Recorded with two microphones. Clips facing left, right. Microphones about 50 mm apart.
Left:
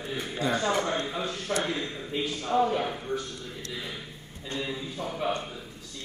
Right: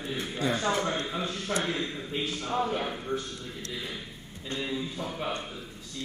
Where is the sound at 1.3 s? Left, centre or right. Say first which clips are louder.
Left 1 dB; centre.